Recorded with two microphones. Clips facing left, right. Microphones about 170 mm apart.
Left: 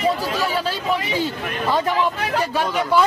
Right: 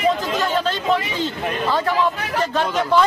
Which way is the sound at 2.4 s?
10° left (ahead or behind).